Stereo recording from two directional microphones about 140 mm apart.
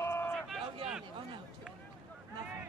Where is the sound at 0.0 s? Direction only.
20° left (ahead or behind).